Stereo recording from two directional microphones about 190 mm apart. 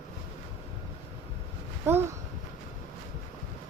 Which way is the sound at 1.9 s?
10° right (ahead or behind).